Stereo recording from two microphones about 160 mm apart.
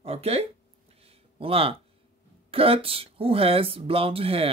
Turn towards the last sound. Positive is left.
turn(degrees=-35)  # may be behind; listen again after turning